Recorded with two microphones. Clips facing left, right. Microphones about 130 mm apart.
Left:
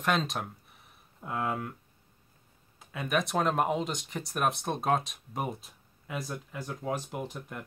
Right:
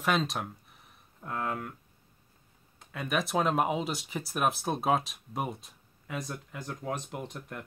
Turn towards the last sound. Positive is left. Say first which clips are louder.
# left 2 dB
turn(degrees=0)  # may be behind; listen again after turning